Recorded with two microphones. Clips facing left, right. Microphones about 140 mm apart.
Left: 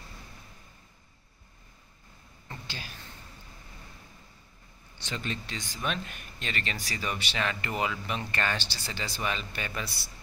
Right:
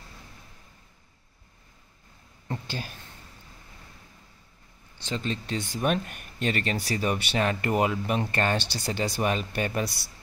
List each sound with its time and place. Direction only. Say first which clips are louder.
2.4 s a sound: right 8 dB; 45° right (ahead or behind)
5.0 s speech: right 5 dB; 30° right (ahead or behind)
5.6 s speech: right 9 dB; 55° right (ahead or behind)